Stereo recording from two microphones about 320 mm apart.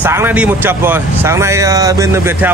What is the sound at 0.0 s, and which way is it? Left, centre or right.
Speech, centre.